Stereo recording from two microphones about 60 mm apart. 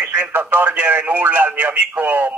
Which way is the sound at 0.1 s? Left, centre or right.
Right.